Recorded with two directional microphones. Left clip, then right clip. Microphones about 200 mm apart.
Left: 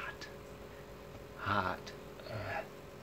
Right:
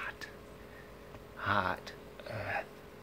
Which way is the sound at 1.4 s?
15° right (ahead or behind).